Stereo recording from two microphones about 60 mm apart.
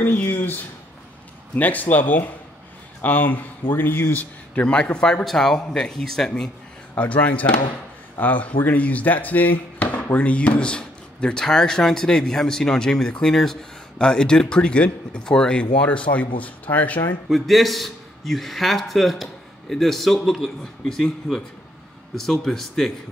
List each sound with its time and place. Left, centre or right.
0.0 s a man's voice: left
4.9 s speech: centre
7.0 s speech: left
17.3 s a man's voice: centre